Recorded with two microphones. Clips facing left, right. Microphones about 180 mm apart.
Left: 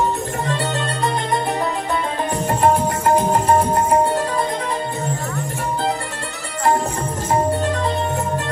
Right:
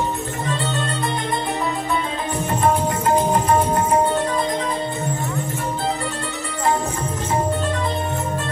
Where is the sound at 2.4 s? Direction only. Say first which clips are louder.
Left 2 dB; 35° left (ahead or behind).